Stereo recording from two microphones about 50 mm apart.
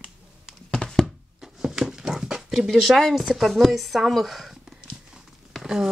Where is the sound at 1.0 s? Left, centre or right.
Centre.